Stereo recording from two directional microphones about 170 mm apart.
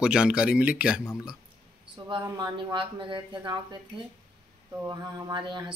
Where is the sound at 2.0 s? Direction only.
20° right (ahead or behind).